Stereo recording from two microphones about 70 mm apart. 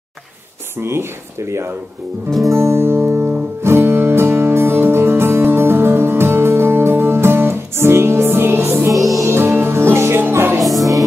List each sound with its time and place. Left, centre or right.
0.7 s speech: right
2.5 s music: right
8.9 s music: centre
9.2 s music: right
10.6 s music: centre